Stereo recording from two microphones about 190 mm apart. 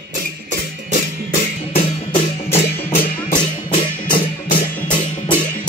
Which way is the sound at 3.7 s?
45° left (ahead or behind).